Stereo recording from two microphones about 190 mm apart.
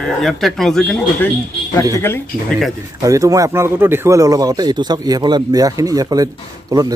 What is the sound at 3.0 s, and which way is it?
A man's voice, 15° right (ahead or behind).